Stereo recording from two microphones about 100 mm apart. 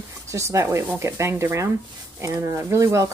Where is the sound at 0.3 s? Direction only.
30° right (ahead or behind).